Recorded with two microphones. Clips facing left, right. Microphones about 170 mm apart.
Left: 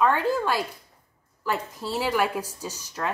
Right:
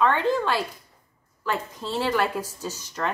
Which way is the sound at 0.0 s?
10° left (ahead or behind).